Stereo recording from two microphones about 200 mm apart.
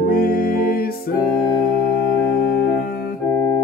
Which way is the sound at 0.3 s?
45° left (ahead or behind).